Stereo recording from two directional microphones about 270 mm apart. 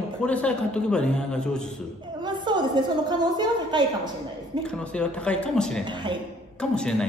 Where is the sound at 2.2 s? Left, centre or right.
Centre.